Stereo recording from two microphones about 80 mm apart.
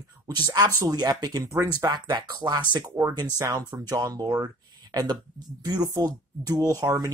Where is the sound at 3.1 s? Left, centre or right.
Right.